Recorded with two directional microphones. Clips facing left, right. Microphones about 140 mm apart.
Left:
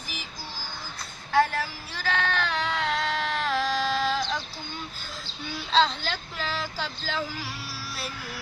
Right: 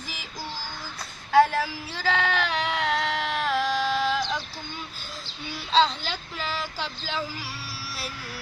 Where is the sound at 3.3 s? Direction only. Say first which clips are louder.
Right 2 dB; 5° right (ahead or behind).